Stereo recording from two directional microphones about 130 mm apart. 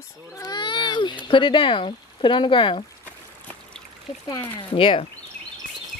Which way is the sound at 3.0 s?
15° left (ahead or behind).